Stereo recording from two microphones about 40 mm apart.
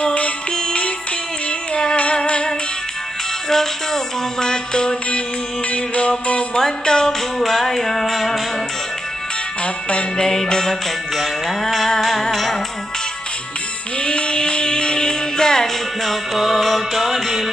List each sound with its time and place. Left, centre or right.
0.0 s music: left
0.6 s music: left
2.1 s music: left
3.4 s music: centre
5.7 s music: left
6.5 s music: centre
7.3 s music: centre
10.1 s music: centre
13.9 s music: left; by 17.5 s centre